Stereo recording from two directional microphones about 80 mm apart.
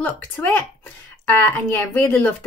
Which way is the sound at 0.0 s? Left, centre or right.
Centre.